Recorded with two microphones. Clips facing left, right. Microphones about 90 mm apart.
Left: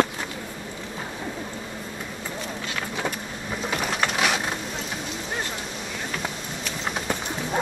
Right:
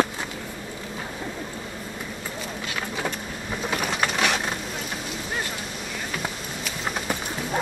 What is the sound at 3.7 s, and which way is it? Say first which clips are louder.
Mechanisms: even; 5° right (ahead or behind).